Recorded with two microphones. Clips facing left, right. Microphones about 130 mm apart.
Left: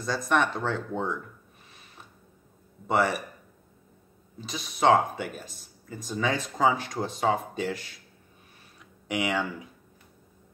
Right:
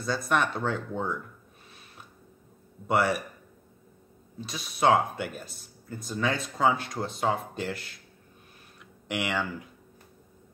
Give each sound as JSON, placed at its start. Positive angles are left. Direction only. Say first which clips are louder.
{"t": 0.0, "sound": "speech", "louder": "left 1 dB", "side_deg": 0}
{"t": 2.9, "sound": "speech", "louder": "even", "side_deg": 0}
{"t": 4.5, "sound": "speech", "louder": "left 1 dB", "side_deg": 0}
{"t": 9.0, "sound": "speech", "louder": "left 2 dB", "side_deg": 0}